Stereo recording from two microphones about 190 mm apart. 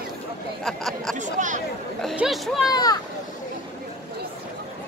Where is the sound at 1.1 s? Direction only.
40° right (ahead or behind).